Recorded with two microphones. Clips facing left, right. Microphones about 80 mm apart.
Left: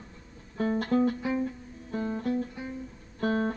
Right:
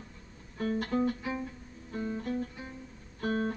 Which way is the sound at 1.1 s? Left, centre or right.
Centre.